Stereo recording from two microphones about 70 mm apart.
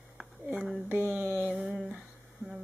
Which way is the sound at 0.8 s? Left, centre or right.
Right.